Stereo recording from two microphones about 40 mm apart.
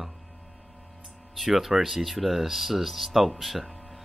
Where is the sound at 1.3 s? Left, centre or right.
Centre.